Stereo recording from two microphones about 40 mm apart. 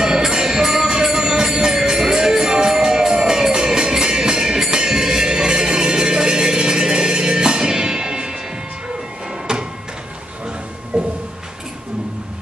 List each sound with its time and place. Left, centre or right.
0.0 s music: centre
9.5 s music: centre
10.9 s a sound: right